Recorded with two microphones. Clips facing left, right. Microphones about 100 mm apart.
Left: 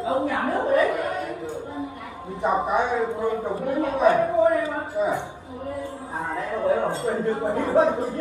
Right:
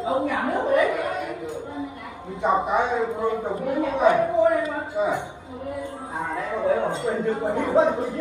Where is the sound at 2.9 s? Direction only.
20° right (ahead or behind).